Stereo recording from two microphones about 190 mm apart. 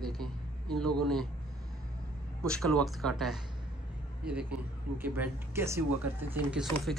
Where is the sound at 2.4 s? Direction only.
5° left (ahead or behind).